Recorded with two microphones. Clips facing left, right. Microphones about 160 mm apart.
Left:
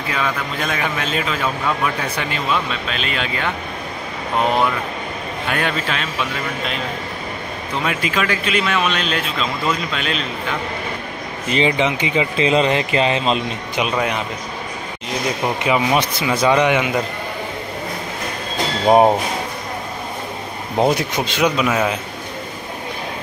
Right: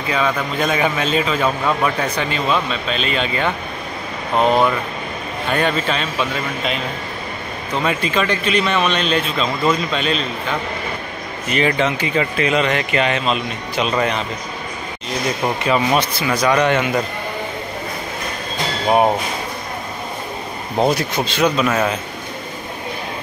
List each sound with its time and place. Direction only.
0.1 s a man's voice: centre (ahead or behind)
5.5 s a man's voice: 5° left (ahead or behind)
7.8 s a man's voice: 5° left (ahead or behind)
11.5 s speech: 20° left (ahead or behind)
13.7 s speech: 10° left (ahead or behind)
15.6 s speech: 15° left (ahead or behind)
20.7 s speech: 15° left (ahead or behind)